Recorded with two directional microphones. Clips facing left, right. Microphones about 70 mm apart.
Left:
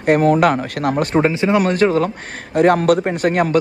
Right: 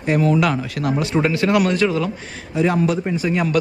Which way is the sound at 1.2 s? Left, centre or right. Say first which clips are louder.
Left 1 dB; left.